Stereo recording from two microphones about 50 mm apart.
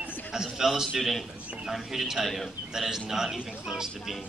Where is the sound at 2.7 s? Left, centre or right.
Centre.